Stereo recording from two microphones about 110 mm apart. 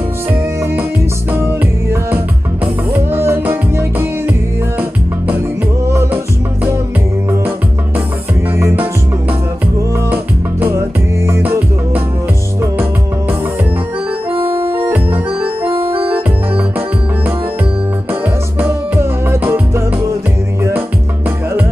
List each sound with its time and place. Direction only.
1.3 s music: 20° right (ahead or behind)
10.0 s music: 20° right (ahead or behind)
14.3 s organ: 55° right (ahead or behind)
14.8 s organ: 15° right (ahead or behind)
15.7 s organ: 55° right (ahead or behind)
18.6 s music: 20° right (ahead or behind)